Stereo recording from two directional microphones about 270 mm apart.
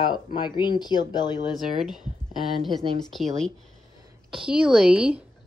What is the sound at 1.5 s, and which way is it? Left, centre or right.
A woman's voice, centre.